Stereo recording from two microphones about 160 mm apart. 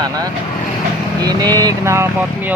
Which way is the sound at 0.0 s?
25° right (ahead or behind).